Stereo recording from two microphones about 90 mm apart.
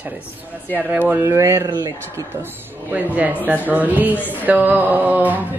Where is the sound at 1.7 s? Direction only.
50° right (ahead or behind).